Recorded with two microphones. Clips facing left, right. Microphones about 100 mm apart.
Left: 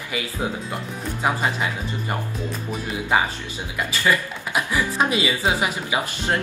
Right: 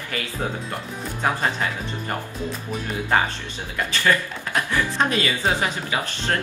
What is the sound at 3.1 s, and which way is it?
A woman's voice, 5° left (ahead or behind).